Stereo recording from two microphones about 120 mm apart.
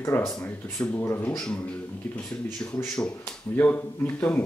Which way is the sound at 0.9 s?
20° left (ahead or behind).